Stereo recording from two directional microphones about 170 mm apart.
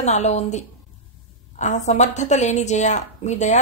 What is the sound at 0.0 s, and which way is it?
A woman's voice, 40° left (ahead or behind).